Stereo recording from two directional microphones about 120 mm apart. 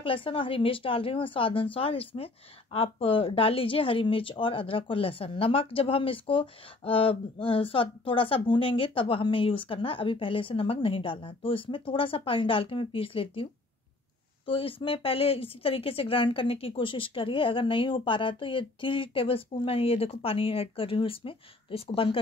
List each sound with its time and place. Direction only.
0.0 s speech: 45° left (ahead or behind)